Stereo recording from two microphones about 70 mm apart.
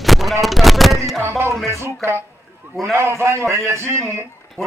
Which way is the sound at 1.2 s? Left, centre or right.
Right.